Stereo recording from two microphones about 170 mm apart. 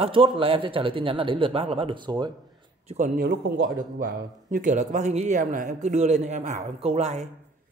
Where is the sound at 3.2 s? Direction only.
65° right (ahead or behind); by 7.2 s 40° right (ahead or behind).